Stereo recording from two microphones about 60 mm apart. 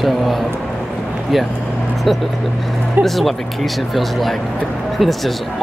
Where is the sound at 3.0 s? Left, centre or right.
Centre.